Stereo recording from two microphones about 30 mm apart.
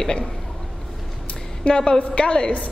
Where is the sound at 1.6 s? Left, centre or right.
Left.